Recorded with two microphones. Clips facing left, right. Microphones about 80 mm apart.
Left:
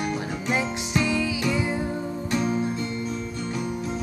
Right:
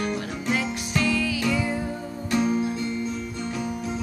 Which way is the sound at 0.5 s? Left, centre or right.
Centre.